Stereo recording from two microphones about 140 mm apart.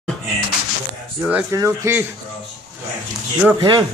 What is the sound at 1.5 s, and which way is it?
Speech, 25° right (ahead or behind).